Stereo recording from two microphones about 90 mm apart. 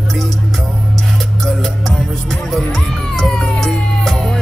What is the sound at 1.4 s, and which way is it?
Music, 5° left (ahead or behind).